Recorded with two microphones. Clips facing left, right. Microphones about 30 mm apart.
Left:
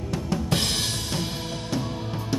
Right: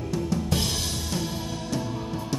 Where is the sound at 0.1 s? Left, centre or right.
Left.